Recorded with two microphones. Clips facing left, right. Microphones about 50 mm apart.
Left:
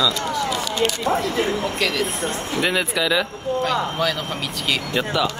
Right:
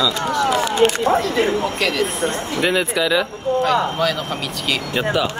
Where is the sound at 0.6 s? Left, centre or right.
Right.